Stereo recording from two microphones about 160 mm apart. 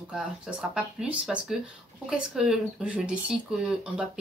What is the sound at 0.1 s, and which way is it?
A woman's voice, 5° right (ahead or behind).